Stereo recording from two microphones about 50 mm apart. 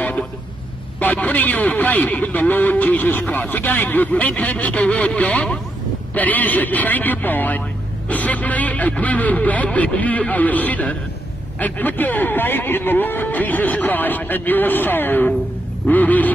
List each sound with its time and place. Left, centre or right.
0.0 s vehicle: left
0.9 s a man's voice: left
6.1 s a man's voice: left